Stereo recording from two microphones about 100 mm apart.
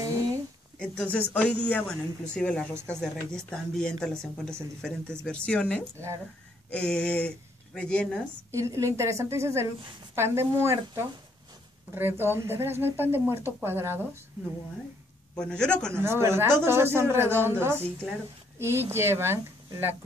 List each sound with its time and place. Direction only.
0.0 s a sound: 35° right (ahead or behind)
0.7 s speech: 15° left (ahead or behind)
8.5 s speech: 30° right (ahead or behind)
15.3 s speech: 10° left (ahead or behind)
15.9 s speech: 25° right (ahead or behind)